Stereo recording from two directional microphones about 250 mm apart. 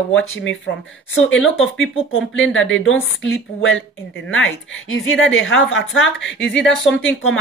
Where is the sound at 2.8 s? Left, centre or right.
Left.